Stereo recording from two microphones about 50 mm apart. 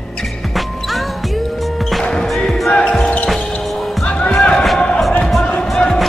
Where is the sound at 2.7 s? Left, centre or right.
Centre.